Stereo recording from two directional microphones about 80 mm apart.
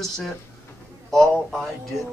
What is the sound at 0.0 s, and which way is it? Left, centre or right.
Speech, centre.